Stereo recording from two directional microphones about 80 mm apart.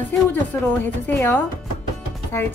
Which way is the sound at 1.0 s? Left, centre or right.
Left.